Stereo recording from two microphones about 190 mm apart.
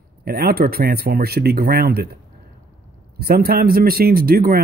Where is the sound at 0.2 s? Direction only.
55° right (ahead or behind).